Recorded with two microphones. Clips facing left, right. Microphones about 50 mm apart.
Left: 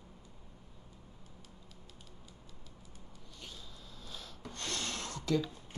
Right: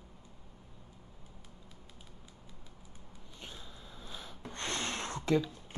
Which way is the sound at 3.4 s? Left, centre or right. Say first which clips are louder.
Right 2 dB; right.